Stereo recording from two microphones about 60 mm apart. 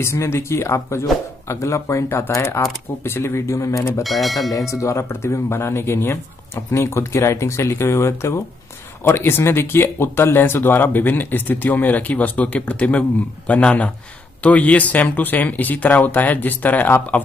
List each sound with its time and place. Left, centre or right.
0.0 s speech: left
0.7 s speech: left
2.0 s speech: left
2.3 s speech: left
4.0 s speech: centre
4.5 s speech: left